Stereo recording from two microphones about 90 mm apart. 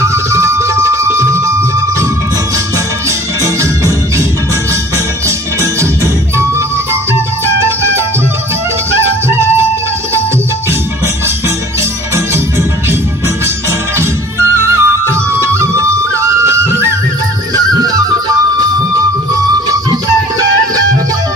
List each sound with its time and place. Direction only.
0.0 s music: 30° right (ahead or behind)
3.4 s music: 35° right (ahead or behind)
7.4 s music: 30° right (ahead or behind)
13.9 s music: 30° right (ahead or behind)